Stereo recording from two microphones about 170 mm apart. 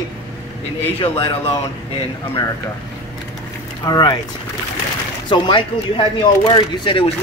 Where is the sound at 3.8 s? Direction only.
25° left (ahead or behind).